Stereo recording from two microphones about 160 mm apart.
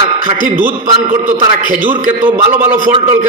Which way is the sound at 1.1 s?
50° right (ahead or behind).